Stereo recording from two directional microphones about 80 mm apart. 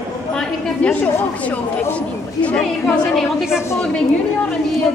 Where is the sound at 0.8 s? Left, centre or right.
Centre.